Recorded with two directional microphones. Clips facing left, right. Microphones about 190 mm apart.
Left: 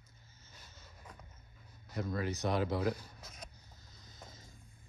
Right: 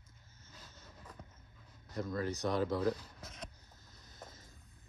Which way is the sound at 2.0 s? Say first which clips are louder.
Even; 5° left (ahead or behind).